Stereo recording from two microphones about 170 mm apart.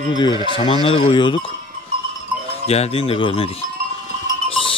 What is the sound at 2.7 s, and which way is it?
Mantra, 35° left (ahead or behind).